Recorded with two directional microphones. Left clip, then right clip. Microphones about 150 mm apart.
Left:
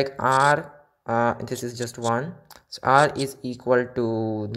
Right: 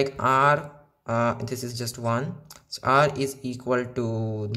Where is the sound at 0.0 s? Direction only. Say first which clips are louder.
Left 1 dB; 25° left (ahead or behind).